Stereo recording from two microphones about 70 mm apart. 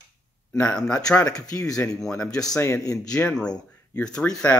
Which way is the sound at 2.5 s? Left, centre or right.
Left.